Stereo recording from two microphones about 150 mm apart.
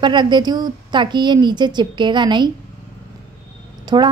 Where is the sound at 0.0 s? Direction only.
30° right (ahead or behind).